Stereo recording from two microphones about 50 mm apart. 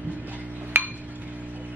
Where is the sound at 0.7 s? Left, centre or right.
Right.